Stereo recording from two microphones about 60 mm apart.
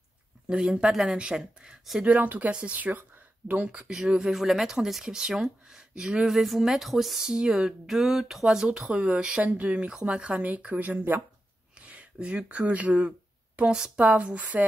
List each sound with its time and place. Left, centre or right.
0.5 s speech: centre
2.0 s speech: right
3.6 s speech: centre
8.8 s speech: centre